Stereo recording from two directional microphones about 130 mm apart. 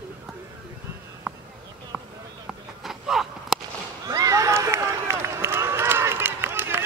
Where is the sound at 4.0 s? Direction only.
25° right (ahead or behind).